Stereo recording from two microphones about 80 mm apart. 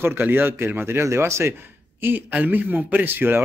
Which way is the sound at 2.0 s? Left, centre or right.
Right.